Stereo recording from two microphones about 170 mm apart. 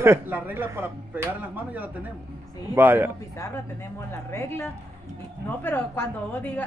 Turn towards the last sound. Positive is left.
turn(degrees=10)  # may be behind; listen again after turning